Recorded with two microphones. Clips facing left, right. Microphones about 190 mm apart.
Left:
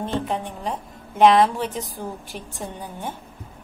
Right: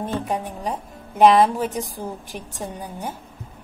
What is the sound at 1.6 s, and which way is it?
Speech, 45° right (ahead or behind).